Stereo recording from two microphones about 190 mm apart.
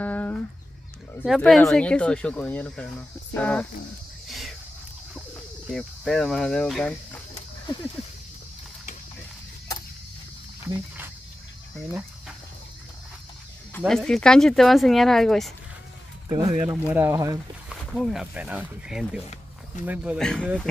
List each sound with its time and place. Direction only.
0.0 s a sound: 10° left (ahead or behind)
1.2 s speech: centre (ahead or behind)
4.3 s a sound: centre (ahead or behind)
5.7 s speech: centre (ahead or behind)
11.7 s cricket: centre (ahead or behind)
13.7 s speech: 5° left (ahead or behind)
16.3 s speech: 20° right (ahead or behind)
17.6 s speech: centre (ahead or behind)